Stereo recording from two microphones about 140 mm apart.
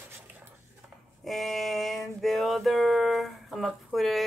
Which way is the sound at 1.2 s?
Centre (ahead or behind).